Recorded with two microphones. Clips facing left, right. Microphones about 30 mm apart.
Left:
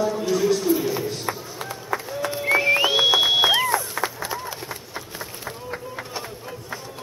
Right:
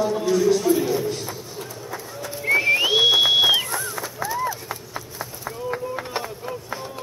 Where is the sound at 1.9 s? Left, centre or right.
Left.